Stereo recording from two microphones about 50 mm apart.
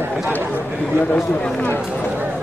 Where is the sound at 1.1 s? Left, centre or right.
Centre.